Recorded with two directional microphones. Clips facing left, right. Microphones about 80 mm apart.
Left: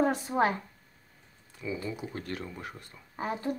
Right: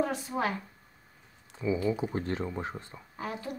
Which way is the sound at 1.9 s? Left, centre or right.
Right.